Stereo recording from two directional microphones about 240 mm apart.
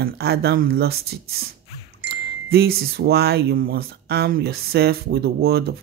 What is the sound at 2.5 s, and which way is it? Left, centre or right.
Speech, right.